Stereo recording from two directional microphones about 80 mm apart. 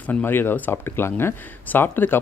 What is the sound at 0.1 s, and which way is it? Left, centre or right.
Speech, left.